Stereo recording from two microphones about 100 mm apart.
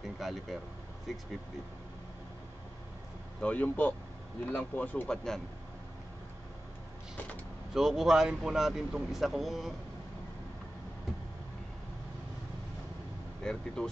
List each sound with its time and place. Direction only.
0.2 s speech: centre (ahead or behind)
3.3 s speech: 15° left (ahead or behind)
5.1 s speech: 5° left (ahead or behind)
7.7 s speech: 5° right (ahead or behind)
13.4 s speech: 5° left (ahead or behind)